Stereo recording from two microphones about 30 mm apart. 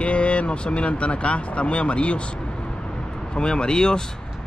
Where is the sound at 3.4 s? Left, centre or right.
Left.